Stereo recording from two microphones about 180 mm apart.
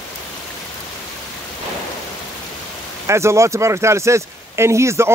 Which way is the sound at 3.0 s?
15° right (ahead or behind).